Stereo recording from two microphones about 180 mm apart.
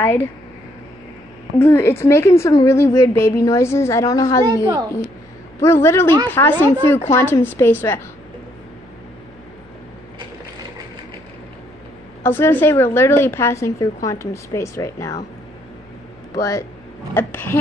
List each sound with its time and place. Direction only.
0.0 s a woman's voice: 10° left (ahead or behind)
1.6 s a woman's voice: 15° left (ahead or behind)
5.6 s a woman's voice: 15° left (ahead or behind)
12.2 s a woman's voice: 15° left (ahead or behind)
16.3 s a woman's voice: 15° left (ahead or behind)